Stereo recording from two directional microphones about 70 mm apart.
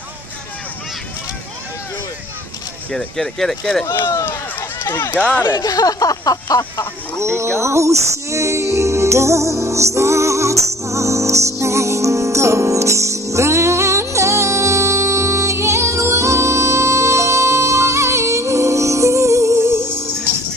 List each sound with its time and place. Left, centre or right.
3.2 s speech: centre
4.6 s run: left
5.1 s speech: centre
5.6 s speech: left
7.2 s music: right